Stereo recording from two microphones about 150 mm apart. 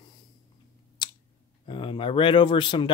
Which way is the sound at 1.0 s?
30° left (ahead or behind).